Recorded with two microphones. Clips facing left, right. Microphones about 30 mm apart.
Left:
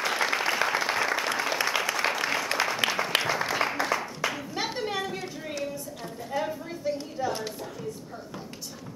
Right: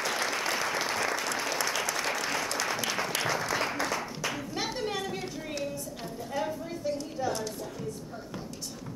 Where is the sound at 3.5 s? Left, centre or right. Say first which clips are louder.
Left 3 dB; centre.